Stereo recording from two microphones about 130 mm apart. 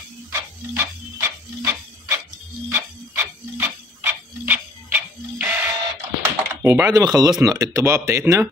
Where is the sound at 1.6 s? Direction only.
15° right (ahead or behind).